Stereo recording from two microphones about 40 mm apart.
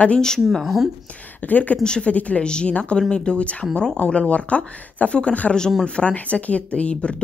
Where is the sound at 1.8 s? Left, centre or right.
Left.